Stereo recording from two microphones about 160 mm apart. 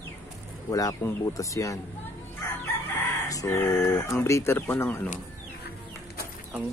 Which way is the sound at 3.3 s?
20° left (ahead or behind).